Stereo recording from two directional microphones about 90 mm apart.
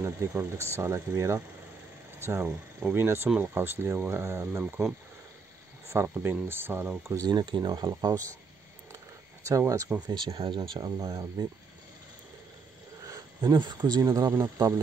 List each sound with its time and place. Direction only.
0.0 s speech: 30° right (ahead or behind)
5.9 s speech: 25° right (ahead or behind)
7.2 s speech: 55° right (ahead or behind)
9.4 s speech: 35° right (ahead or behind)
10.0 s speech: 65° right (ahead or behind); by 11.4 s 50° right (ahead or behind)
13.4 s speech: 55° right (ahead or behind); by 14.8 s 35° right (ahead or behind)